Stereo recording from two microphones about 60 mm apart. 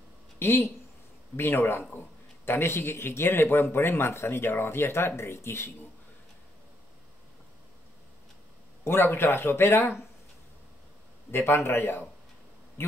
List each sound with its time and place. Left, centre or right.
0.4 s a man's voice: left
8.8 s a man's voice: left
11.3 s a man's voice: left